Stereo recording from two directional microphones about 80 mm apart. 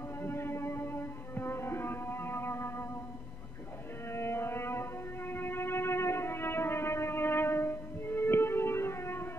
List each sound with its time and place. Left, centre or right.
0.2 s music: left
4.1 s music: left